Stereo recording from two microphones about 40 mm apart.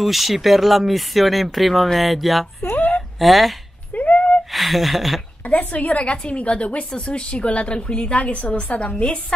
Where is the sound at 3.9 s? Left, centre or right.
Left.